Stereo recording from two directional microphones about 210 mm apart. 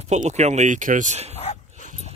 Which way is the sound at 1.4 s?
35° left (ahead or behind).